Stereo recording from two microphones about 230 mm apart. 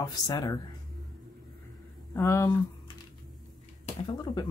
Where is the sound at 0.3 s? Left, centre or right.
Centre.